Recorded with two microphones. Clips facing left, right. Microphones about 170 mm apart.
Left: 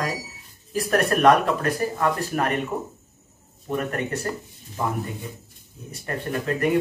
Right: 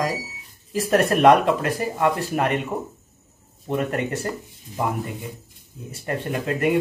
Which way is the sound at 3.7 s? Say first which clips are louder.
Right 2 dB; 20° right (ahead or behind).